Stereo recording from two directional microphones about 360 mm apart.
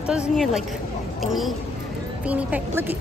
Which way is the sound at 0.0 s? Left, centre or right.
Centre.